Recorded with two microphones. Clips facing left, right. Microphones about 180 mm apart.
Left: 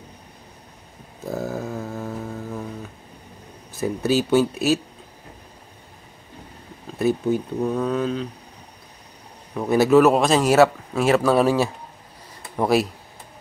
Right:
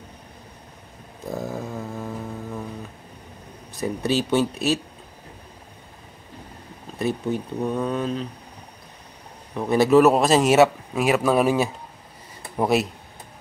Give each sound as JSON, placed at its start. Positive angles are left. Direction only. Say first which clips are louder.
{"t": 1.3, "sound": "mantra", "louder": "left 2 dB", "side_deg": 0}
{"t": 3.7, "sound": "speech", "louder": "left 2 dB", "side_deg": 0}
{"t": 7.0, "sound": "speech", "louder": "left 4 dB", "side_deg": 0}
{"t": 9.5, "sound": "speech", "louder": "left 1 dB", "side_deg": 0}
{"t": 10.6, "sound": "speech", "louder": "left 1 dB", "side_deg": -15}
{"t": 11.1, "sound": "speech", "louder": "left 2 dB", "side_deg": -5}
{"t": 11.4, "sound": "speech", "louder": "left 1 dB", "side_deg": -15}
{"t": 12.5, "sound": "speech", "louder": "left 1 dB", "side_deg": 0}